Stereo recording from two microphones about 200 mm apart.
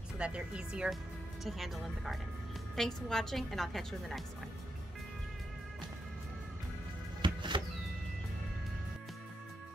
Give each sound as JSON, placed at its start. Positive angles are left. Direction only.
{"t": 0.2, "sound": "a woman's voice", "side_deg": -5}
{"t": 7.2, "sound": "music", "side_deg": -25}